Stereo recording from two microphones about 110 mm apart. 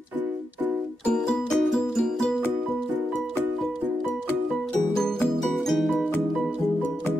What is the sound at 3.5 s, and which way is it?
Music, centre (ahead or behind).